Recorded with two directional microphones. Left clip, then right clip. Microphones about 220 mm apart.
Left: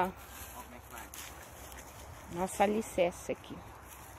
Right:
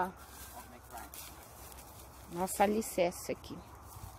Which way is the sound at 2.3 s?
10° right (ahead or behind).